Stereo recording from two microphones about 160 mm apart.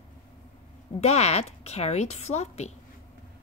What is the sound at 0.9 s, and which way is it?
Speech, 45° left (ahead or behind).